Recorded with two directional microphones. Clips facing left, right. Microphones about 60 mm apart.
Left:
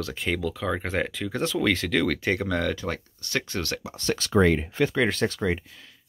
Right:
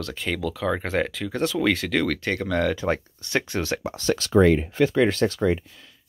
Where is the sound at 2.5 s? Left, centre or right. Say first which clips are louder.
Right 3 dB; centre.